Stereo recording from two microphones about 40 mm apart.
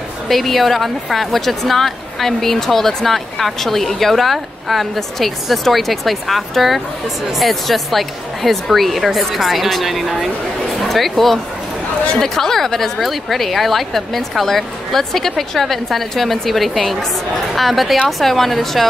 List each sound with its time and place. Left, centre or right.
0.3 s speech: centre